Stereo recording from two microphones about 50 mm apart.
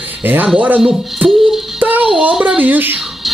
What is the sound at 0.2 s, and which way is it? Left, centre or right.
Speech, right.